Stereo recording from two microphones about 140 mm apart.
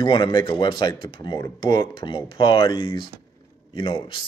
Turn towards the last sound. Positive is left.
turn(degrees=35)  # may be behind; listen again after turning